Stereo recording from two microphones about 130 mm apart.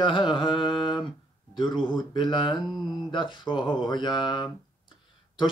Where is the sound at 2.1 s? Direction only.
35° left (ahead or behind).